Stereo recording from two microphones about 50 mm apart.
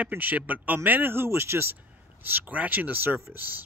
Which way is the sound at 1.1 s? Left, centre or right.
Right.